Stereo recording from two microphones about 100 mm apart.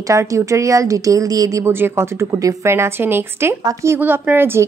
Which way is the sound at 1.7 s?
25° right (ahead or behind).